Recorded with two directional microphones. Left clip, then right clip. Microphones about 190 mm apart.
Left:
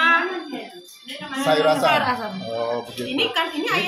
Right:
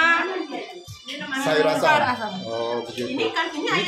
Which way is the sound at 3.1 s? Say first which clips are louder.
Left 3 dB; 5° right (ahead or behind).